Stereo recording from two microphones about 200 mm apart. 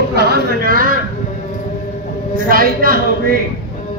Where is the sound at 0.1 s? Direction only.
50° right (ahead or behind).